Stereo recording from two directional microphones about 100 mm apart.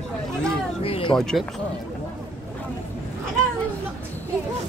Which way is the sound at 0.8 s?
70° left (ahead or behind).